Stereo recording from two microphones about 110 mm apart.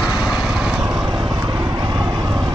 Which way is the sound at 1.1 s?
45° right (ahead or behind).